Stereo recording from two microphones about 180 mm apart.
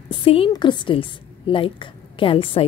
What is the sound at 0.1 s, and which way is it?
A woman's voice, 30° left (ahead or behind).